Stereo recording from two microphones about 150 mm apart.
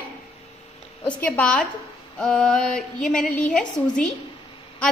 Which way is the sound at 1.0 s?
5° left (ahead or behind).